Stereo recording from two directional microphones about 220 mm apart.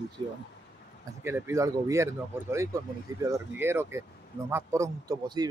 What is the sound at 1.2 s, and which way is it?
Speech, 10° right (ahead or behind).